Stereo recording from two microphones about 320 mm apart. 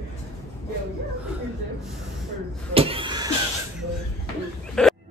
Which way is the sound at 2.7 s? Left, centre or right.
Centre.